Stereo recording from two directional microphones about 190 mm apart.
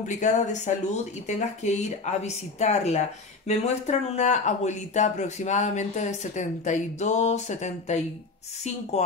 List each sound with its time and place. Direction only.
0.0 s speech: 40° left (ahead or behind)